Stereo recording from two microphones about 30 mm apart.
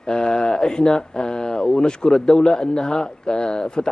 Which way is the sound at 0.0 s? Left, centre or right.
Left.